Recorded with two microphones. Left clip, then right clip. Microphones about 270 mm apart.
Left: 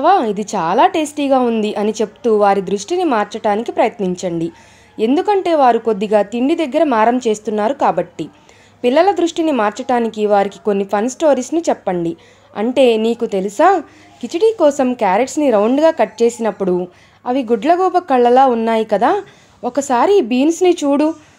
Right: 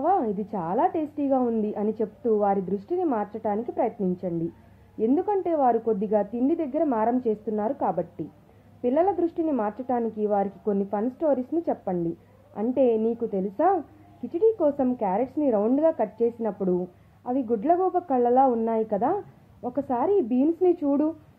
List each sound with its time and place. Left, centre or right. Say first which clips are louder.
0.0 s a woman's voice: left 11 dB; left